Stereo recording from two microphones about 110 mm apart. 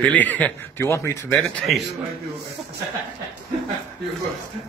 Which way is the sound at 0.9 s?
25° left (ahead or behind).